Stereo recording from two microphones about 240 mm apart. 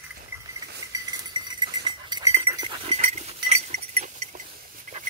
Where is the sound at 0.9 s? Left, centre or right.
Centre.